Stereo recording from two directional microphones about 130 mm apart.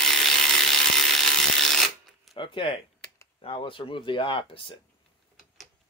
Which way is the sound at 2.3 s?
40° left (ahead or behind).